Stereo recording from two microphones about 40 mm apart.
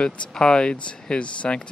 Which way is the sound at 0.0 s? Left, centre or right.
Left.